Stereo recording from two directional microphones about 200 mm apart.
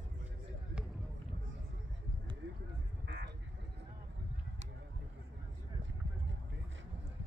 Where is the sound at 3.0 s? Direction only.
60° right (ahead or behind).